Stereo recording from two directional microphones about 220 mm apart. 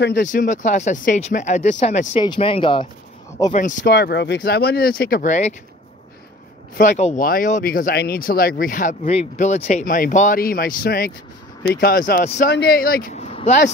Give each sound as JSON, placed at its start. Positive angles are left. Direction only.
{"t": 0.0, "sound": "speech", "side_deg": 40}
{"t": 3.5, "sound": "speech", "side_deg": 40}
{"t": 6.8, "sound": "speech", "side_deg": 35}
{"t": 12.4, "sound": "speech", "side_deg": 45}